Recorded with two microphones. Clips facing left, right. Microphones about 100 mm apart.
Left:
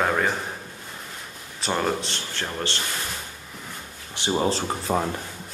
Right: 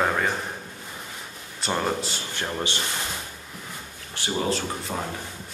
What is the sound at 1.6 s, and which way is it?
Speech, centre (ahead or behind).